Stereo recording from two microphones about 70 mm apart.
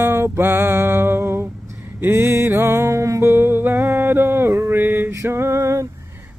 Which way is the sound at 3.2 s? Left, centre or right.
Right.